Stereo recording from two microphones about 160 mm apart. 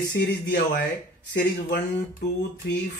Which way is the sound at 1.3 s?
90° left.